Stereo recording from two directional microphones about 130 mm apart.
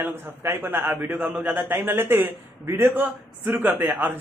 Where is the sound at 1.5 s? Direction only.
15° right (ahead or behind).